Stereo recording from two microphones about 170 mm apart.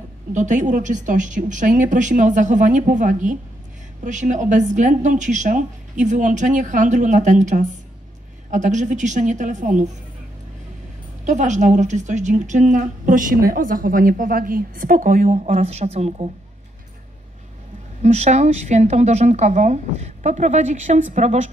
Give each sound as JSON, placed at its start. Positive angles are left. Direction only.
{"t": 0.3, "sound": "a woman's voice", "side_deg": -45}
{"t": 11.2, "sound": "a woman's voice", "side_deg": -45}
{"t": 18.0, "sound": "a woman's voice", "side_deg": -40}